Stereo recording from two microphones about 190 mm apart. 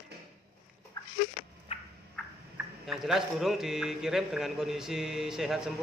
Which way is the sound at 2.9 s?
Centre (ahead or behind).